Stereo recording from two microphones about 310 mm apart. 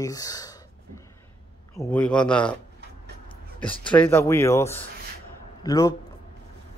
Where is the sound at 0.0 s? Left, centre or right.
Centre.